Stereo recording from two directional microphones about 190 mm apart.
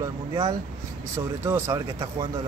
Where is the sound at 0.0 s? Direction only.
25° right (ahead or behind).